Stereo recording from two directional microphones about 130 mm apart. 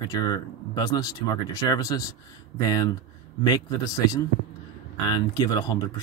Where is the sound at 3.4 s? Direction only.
30° left (ahead or behind).